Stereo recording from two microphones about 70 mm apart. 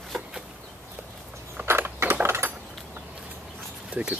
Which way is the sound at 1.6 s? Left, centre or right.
Right.